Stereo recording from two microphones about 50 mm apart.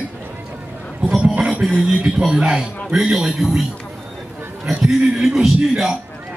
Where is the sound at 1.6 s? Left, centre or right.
Centre.